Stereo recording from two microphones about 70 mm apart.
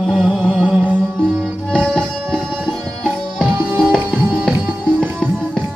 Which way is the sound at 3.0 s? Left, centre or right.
Centre.